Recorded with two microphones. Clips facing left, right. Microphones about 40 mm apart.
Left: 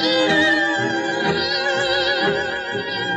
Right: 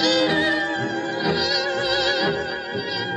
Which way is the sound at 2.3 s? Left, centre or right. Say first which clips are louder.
Left 4 dB; left.